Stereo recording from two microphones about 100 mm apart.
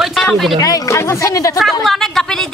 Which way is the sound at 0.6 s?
35° left (ahead or behind).